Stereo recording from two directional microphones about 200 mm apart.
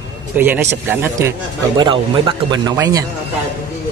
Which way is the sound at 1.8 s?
25° right (ahead or behind).